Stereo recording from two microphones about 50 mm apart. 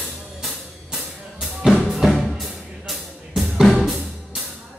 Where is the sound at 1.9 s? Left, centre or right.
Centre.